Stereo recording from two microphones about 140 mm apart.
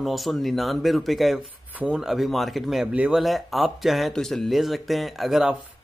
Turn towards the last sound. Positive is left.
turn(degrees=0)  # may be behind; listen again after turning